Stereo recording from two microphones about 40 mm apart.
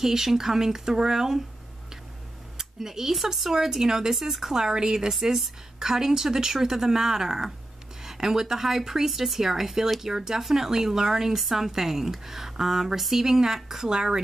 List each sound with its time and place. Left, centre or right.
0.0 s speech: centre
2.5 s speech: centre
5.1 s speech: centre